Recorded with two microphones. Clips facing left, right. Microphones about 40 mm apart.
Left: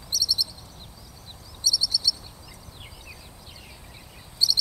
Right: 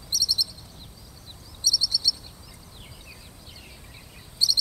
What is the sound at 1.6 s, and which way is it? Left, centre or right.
Bird, centre.